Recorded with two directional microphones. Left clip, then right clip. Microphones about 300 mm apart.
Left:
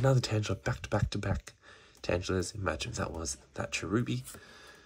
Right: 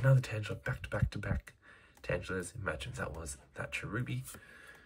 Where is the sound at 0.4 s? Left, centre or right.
Centre.